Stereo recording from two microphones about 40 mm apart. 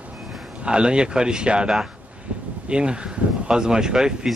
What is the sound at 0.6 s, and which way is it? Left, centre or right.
Speech, right.